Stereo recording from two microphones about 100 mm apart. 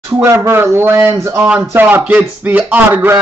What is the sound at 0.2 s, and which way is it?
Speech, 25° right (ahead or behind).